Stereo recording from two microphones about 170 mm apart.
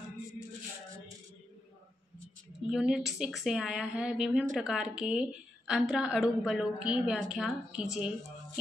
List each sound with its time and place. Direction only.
2.7 s a woman's voice: 5° right (ahead or behind)